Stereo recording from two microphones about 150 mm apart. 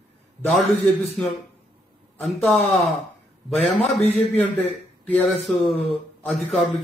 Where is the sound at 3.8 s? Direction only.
45° left (ahead or behind).